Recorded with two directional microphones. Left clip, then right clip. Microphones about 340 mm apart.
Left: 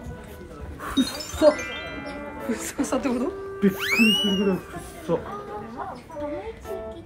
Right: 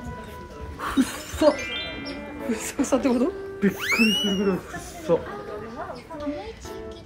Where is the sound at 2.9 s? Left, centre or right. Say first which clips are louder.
Right 4 dB; centre.